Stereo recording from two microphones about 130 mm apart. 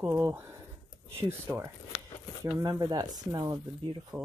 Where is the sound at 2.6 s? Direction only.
30° right (ahead or behind).